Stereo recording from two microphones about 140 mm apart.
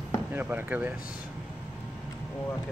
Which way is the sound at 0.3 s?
15° right (ahead or behind).